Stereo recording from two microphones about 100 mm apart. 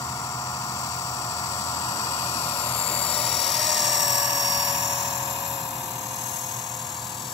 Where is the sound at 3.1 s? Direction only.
5° left (ahead or behind).